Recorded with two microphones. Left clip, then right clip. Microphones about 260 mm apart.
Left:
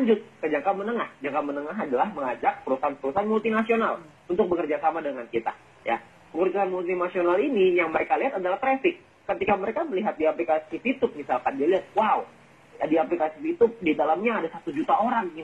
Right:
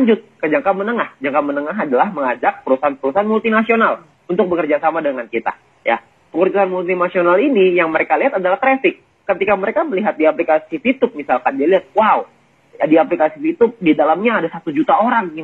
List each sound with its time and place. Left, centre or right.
0.0 s a man's voice: right